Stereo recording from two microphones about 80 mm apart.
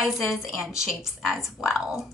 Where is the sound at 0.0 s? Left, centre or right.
Centre.